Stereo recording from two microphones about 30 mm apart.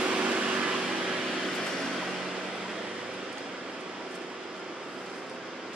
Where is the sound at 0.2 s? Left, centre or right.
Right.